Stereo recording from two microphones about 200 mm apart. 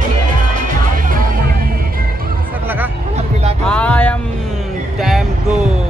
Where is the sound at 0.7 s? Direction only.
40° right (ahead or behind).